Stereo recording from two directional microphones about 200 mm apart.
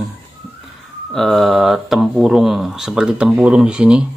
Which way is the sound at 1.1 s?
Centre (ahead or behind).